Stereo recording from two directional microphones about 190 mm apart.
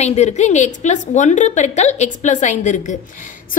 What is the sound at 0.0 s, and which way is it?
A woman's voice, 35° left (ahead or behind).